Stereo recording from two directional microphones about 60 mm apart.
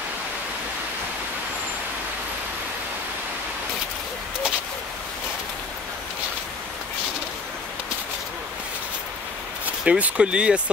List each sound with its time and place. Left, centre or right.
9.8 s speech: right